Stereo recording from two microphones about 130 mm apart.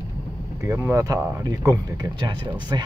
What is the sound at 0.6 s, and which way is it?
Speech, 20° right (ahead or behind).